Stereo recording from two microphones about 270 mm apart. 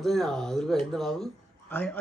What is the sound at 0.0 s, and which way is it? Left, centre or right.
A woman's voice, centre.